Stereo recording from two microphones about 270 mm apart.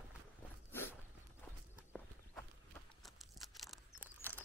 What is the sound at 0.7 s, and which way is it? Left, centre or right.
Dog, centre.